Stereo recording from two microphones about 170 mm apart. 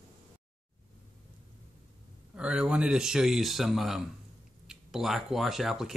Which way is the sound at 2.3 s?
5° right (ahead or behind).